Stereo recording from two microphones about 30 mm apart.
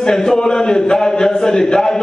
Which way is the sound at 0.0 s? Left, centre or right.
Left.